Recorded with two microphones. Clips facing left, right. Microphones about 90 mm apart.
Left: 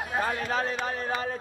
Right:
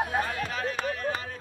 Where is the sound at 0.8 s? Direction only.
35° left (ahead or behind).